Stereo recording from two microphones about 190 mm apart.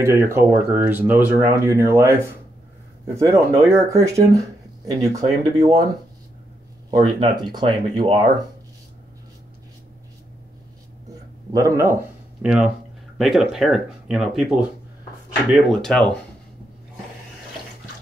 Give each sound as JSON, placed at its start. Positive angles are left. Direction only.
{"t": 0.0, "sound": "speech", "side_deg": -15}
{"t": 6.9, "sound": "speech", "side_deg": -25}
{"t": 11.5, "sound": "speech", "side_deg": -15}